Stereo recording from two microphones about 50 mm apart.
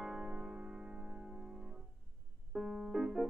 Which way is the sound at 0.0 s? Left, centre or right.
Centre.